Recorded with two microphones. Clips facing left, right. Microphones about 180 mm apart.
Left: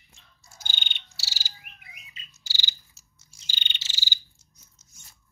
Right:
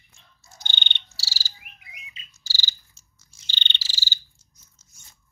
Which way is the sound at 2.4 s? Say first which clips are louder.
Right 2 dB; 20° left (ahead or behind).